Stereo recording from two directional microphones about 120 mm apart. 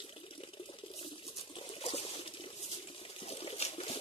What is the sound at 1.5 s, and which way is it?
Water, 55° left (ahead or behind).